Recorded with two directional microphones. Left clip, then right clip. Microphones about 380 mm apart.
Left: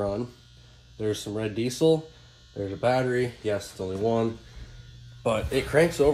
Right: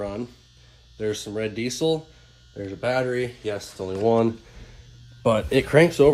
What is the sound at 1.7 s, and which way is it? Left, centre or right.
Speech, centre.